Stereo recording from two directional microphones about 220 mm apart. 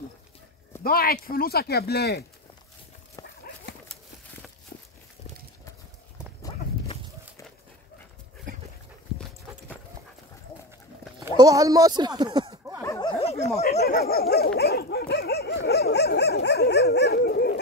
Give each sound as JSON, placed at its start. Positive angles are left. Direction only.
{"t": 0.8, "sound": "dog", "side_deg": 40}
{"t": 6.4, "sound": "livestock", "side_deg": 15}
{"t": 11.3, "sound": "speech", "side_deg": -15}
{"t": 12.8, "sound": "a sound", "side_deg": 15}
{"t": 13.6, "sound": "dog", "side_deg": 45}